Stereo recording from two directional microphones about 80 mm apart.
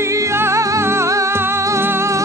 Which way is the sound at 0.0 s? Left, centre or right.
Right.